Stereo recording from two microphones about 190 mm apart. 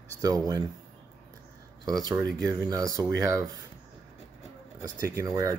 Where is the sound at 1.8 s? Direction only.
20° right (ahead or behind).